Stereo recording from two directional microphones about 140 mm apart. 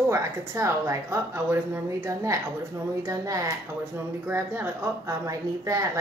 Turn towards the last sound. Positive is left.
turn(degrees=-20)  # may be behind; listen again after turning